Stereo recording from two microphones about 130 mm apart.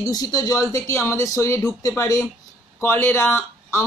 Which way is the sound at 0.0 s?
30° left (ahead or behind).